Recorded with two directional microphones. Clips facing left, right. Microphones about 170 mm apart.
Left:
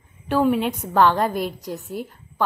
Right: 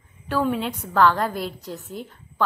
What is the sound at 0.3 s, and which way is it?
Speech, 15° left (ahead or behind).